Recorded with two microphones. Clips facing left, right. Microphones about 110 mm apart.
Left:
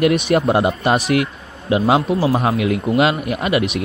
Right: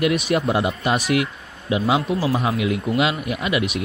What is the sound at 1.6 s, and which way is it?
A man's voice, 55° left (ahead or behind).